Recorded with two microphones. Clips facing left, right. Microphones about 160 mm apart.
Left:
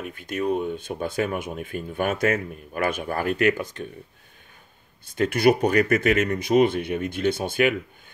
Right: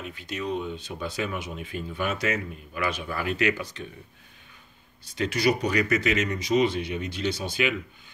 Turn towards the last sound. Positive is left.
turn(degrees=50)  # may be behind; listen again after turning